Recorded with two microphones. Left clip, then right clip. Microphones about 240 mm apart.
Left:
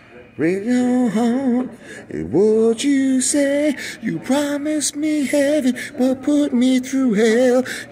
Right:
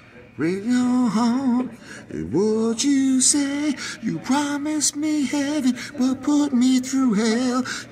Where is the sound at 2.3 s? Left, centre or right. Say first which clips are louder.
Left 6 dB; right.